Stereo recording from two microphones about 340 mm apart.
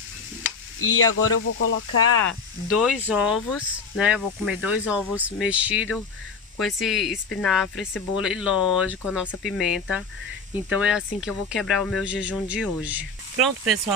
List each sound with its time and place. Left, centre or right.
0.7 s speech: left
2.7 s speech: centre